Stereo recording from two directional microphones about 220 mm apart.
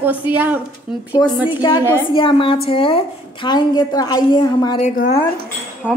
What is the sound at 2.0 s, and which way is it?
A woman's voice, 20° left (ahead or behind).